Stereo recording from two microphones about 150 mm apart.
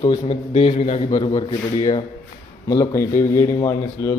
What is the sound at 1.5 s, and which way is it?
Speech, 25° left (ahead or behind).